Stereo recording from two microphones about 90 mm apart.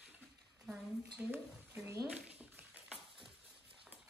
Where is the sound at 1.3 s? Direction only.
25° right (ahead or behind).